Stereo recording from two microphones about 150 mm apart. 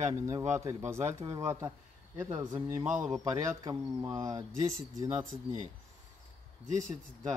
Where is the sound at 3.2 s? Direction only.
25° right (ahead or behind).